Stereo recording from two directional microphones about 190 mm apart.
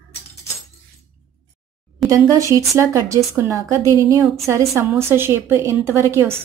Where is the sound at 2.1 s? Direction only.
15° right (ahead or behind).